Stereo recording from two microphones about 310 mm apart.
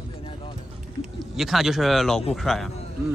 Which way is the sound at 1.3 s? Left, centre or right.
Centre.